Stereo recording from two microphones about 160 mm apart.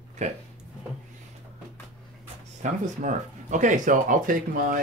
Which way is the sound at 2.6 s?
50° right (ahead or behind).